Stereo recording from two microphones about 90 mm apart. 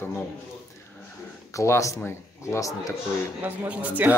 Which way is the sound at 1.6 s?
35° left (ahead or behind).